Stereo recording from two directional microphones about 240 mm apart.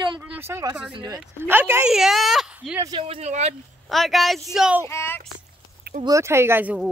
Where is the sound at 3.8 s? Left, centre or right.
Centre.